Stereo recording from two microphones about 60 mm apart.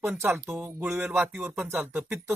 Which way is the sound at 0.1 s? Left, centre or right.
Right.